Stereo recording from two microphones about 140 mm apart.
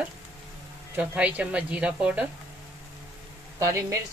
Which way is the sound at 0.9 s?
10° right (ahead or behind).